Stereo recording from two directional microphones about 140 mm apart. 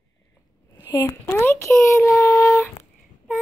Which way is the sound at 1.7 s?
Centre (ahead or behind).